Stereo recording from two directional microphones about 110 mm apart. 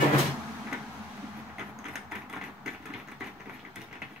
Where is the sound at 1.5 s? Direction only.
5° right (ahead or behind).